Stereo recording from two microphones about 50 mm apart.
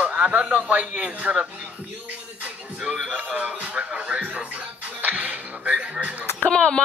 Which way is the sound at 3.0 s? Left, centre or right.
Right.